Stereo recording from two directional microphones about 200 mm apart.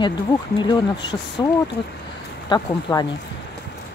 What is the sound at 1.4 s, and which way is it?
Speech, 20° left (ahead or behind).